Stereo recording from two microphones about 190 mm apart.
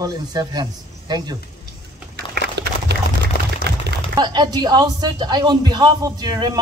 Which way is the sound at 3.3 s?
55° left (ahead or behind).